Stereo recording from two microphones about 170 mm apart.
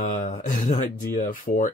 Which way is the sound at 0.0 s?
50° left (ahead or behind).